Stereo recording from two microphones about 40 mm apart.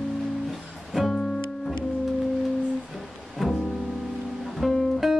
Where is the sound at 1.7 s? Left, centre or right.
Centre.